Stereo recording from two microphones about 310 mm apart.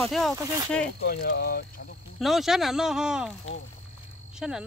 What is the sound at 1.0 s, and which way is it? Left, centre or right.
Speech, left.